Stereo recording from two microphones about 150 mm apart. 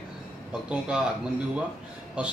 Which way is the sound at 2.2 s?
10° right (ahead or behind).